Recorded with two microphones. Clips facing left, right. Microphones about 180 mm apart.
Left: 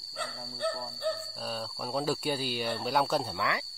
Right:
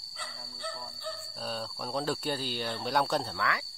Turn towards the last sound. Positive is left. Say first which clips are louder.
# left 1 dB
turn(degrees=20)  # may be behind; listen again after turning